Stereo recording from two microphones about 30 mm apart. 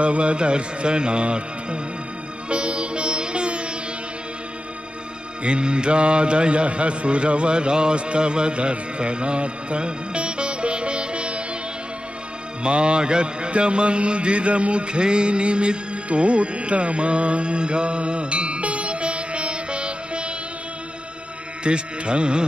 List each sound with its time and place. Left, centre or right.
0.0 s music: right
5.4 s mantra: right
12.6 s mantra: right
21.6 s music: right